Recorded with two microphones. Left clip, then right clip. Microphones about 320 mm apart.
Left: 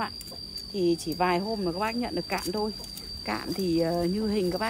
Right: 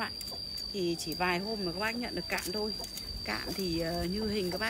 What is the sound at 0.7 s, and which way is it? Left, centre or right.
Speech, centre.